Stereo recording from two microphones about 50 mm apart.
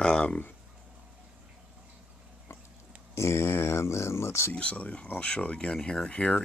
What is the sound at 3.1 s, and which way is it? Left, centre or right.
Speech, left.